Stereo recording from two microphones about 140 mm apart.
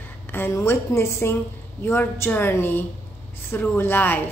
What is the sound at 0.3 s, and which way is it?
A woman's voice, 15° left (ahead or behind).